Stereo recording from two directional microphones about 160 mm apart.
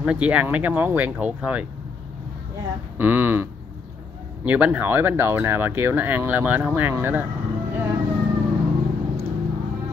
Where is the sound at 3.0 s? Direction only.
10° right (ahead or behind).